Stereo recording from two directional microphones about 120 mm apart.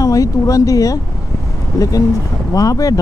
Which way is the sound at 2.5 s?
30° left (ahead or behind).